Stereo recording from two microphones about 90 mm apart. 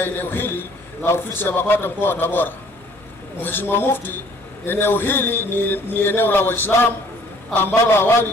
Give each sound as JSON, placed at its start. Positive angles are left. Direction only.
{"t": 0.0, "sound": "a man's voice", "side_deg": 25}